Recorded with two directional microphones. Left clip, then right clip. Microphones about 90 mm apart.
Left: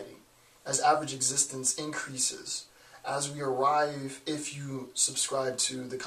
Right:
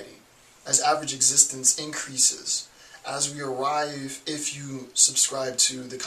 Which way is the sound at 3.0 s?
10° left (ahead or behind).